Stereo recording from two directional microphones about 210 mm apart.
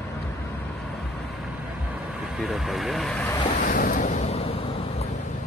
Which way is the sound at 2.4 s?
Centre (ahead or behind).